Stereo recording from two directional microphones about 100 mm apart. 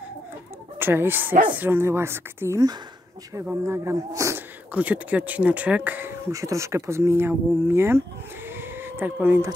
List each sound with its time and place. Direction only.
0.7 s speech: 20° right (ahead or behind)
3.6 s speech: 25° right (ahead or behind)
4.7 s speech: 15° right (ahead or behind)
6.3 s speech: 30° right (ahead or behind)
8.5 s cat: 20° right (ahead or behind)